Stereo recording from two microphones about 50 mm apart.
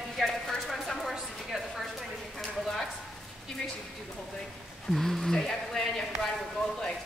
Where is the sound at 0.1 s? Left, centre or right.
Centre.